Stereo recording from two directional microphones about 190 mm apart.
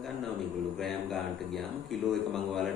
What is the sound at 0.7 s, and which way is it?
Speech, centre (ahead or behind).